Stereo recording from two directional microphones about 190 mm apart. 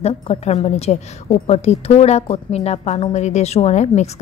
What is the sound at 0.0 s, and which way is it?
A woman's voice, 35° left (ahead or behind).